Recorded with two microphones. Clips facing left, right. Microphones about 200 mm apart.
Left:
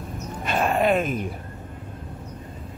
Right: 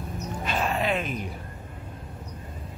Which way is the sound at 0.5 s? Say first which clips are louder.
Left 6 dB; 50° left (ahead or behind).